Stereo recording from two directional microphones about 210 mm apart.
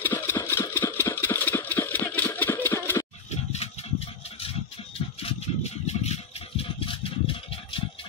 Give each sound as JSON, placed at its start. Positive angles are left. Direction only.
{"t": 0.0, "sound": "engine", "side_deg": 10}
{"t": 3.3, "sound": "vehicle", "side_deg": 30}
{"t": 5.2, "sound": "rattle", "side_deg": 30}